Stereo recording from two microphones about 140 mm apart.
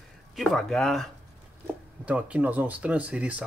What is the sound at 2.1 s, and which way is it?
Speech, 10° right (ahead or behind).